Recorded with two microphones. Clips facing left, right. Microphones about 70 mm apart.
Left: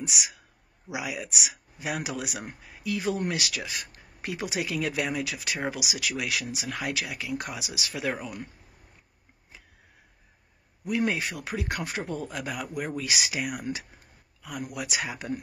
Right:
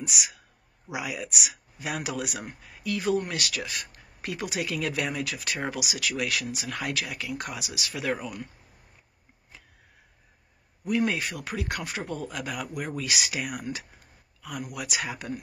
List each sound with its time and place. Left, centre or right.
0.0 s speech: left
11.0 s speech: left
14.7 s speech: left